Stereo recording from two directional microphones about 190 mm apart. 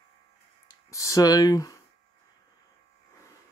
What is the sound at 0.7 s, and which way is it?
Speech, 15° left (ahead or behind).